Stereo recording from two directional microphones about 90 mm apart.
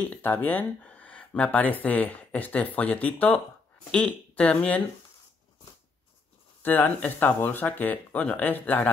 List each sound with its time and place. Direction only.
0.0 s speech: 20° left (ahead or behind)
6.6 s speech: 20° left (ahead or behind)